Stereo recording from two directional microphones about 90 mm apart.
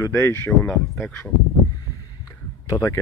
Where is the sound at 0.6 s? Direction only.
10° left (ahead or behind).